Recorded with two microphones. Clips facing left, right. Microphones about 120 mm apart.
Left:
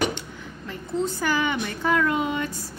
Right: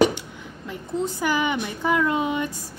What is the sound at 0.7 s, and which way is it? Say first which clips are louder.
A woman's voice: even; 15° right (ahead or behind).